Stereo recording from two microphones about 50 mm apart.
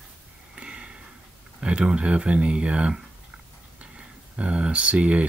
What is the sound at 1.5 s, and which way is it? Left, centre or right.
Speech, right.